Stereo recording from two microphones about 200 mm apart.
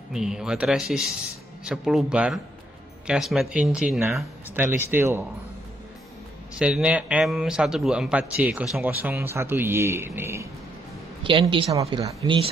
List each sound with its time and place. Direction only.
0.1 s a man's voice: 5° right (ahead or behind)
6.6 s a man's voice: 5° right (ahead or behind)
11.2 s speech: 25° right (ahead or behind)